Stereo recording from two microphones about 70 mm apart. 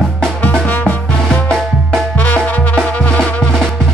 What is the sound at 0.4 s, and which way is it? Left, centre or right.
Music, centre.